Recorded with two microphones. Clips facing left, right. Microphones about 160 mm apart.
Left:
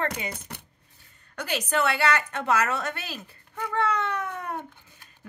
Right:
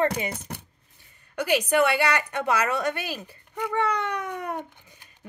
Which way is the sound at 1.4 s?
10° right (ahead or behind).